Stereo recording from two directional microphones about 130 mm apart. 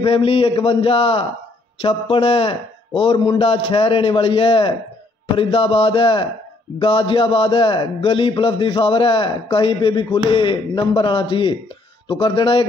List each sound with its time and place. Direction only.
0.0 s a man's voice: 45° left (ahead or behind)